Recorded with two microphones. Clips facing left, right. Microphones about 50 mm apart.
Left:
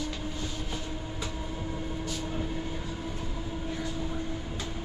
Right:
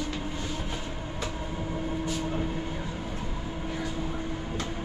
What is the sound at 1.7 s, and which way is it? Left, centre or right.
Train, right.